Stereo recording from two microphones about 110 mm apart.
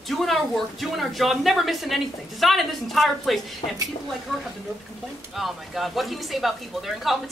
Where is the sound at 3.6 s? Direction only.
55° left (ahead or behind).